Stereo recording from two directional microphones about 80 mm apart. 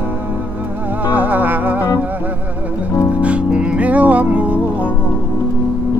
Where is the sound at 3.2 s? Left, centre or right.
Centre.